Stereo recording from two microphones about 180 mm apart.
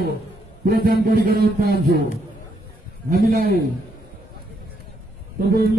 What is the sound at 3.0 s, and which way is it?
Speech, 55° right (ahead or behind).